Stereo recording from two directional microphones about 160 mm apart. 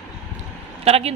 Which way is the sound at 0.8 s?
40° right (ahead or behind).